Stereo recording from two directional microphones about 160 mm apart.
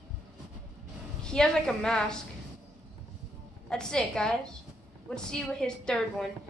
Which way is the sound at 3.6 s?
5° left (ahead or behind).